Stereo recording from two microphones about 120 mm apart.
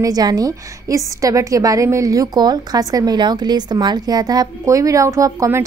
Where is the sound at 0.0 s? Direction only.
30° right (ahead or behind).